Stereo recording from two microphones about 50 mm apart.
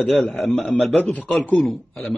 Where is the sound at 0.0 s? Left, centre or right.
Centre.